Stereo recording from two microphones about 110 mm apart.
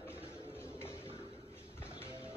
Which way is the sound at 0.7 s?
20° left (ahead or behind).